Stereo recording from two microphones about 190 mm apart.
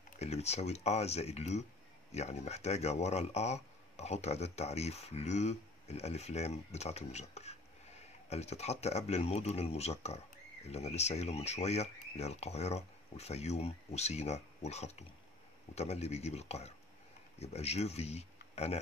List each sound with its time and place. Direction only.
0.2 s speech: 35° left (ahead or behind)